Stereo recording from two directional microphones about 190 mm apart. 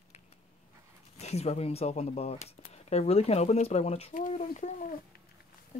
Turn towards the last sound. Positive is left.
turn(degrees=40)  # may be behind; listen again after turning